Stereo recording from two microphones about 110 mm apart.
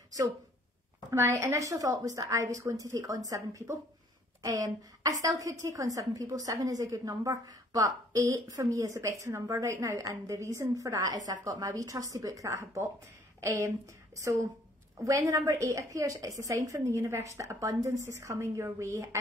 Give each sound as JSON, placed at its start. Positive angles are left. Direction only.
{"t": 1.1, "sound": "a woman's voice", "side_deg": -25}